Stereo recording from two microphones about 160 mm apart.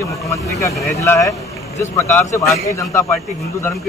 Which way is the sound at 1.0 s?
20° left (ahead or behind).